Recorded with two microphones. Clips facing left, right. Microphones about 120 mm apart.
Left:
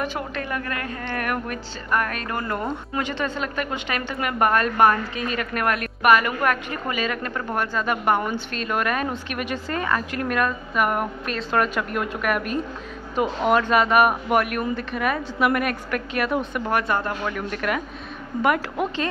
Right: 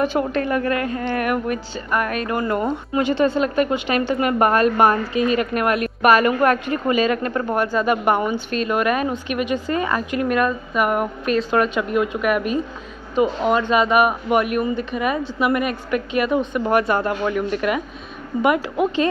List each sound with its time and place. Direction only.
0.0 s a woman's voice: 25° right (ahead or behind)
3.3 s a woman's voice: 25° right (ahead or behind)
7.7 s a woman's voice: 15° right (ahead or behind)
16.8 s a woman's voice: 15° right (ahead or behind)